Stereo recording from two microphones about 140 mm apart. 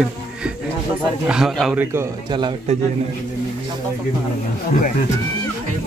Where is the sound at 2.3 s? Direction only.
30° right (ahead or behind).